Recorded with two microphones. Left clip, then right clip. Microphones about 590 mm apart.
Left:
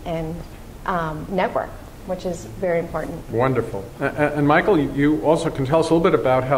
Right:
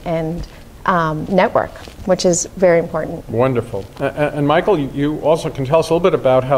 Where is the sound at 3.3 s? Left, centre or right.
Right.